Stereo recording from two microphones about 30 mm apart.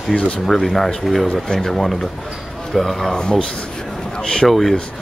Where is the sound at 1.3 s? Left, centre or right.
Centre.